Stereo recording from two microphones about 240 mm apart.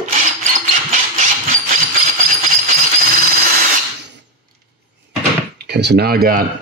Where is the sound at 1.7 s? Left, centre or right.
Right.